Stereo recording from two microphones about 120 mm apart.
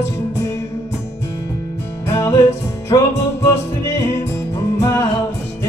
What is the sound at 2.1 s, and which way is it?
Music, 25° left (ahead or behind).